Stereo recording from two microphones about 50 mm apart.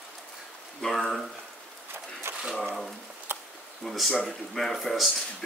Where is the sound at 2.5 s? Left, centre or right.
Centre.